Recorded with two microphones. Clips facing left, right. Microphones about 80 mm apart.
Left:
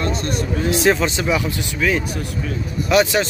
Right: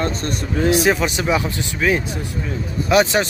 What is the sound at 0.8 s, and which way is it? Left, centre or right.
Speech, centre.